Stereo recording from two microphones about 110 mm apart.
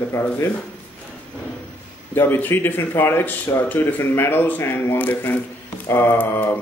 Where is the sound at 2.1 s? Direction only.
20° left (ahead or behind).